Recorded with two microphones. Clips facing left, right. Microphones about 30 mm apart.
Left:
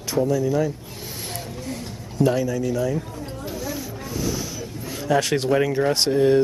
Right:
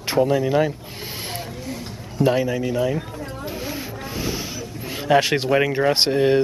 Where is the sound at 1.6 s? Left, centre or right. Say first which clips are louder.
Even; centre.